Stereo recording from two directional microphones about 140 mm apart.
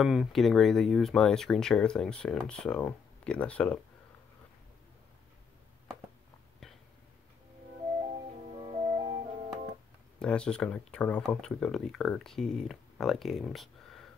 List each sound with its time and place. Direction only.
0.0 s speech: centre (ahead or behind)
6.6 s a sound: 5° left (ahead or behind)
8.5 s music: 40° right (ahead or behind)
10.1 s speech: 5° left (ahead or behind)